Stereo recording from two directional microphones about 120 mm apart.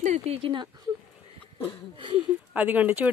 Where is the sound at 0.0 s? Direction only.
75° right (ahead or behind).